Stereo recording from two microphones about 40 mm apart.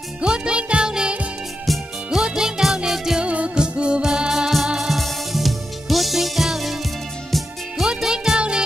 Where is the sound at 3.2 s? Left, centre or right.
Right; by 4.9 s centre.